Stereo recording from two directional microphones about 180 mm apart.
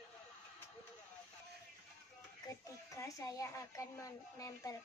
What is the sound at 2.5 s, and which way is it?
Speech, 15° left (ahead or behind).